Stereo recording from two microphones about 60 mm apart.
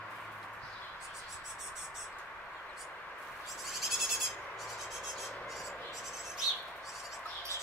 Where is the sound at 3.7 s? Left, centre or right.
Centre.